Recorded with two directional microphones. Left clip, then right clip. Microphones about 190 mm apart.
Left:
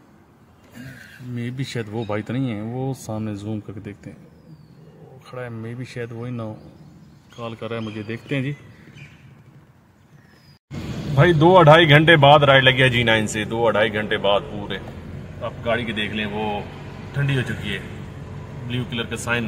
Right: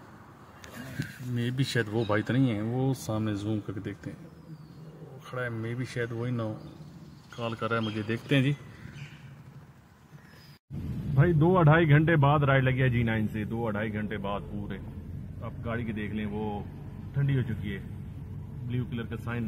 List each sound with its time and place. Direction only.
1.3 s speech: centre (ahead or behind)
5.2 s speech: 5° left (ahead or behind)
11.1 s speech: 15° left (ahead or behind)